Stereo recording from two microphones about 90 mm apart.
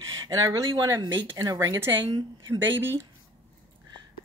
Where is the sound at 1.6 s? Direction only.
35° right (ahead or behind).